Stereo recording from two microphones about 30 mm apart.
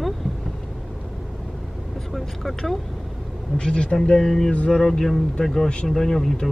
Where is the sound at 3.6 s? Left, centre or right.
Left; by 6.3 s centre.